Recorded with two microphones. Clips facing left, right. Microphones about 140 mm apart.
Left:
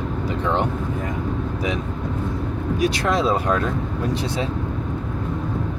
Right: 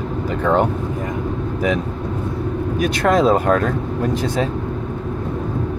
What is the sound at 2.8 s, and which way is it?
Speech, 50° right (ahead or behind).